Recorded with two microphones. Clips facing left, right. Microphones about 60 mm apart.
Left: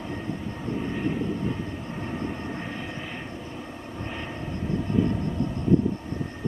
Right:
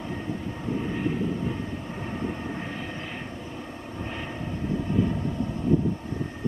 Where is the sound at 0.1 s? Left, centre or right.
Centre.